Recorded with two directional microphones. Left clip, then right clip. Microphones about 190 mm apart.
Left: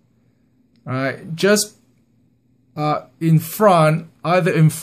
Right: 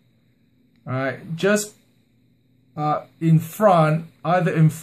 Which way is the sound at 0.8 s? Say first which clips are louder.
Left 3 dB; 35° left (ahead or behind).